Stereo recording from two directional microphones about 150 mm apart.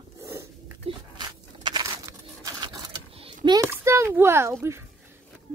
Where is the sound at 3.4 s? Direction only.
20° right (ahead or behind).